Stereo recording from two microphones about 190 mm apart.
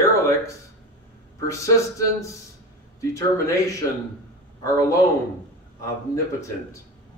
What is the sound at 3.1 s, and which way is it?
Speech, 15° left (ahead or behind).